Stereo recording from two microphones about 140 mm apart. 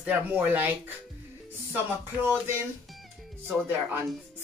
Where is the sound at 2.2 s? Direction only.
20° right (ahead or behind).